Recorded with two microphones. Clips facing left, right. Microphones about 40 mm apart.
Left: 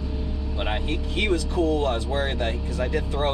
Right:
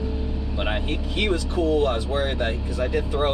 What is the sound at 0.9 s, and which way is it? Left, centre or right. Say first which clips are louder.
Speech: left 2 dB; right.